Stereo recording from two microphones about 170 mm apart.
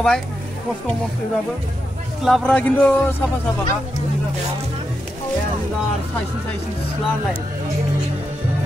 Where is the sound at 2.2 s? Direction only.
Centre (ahead or behind).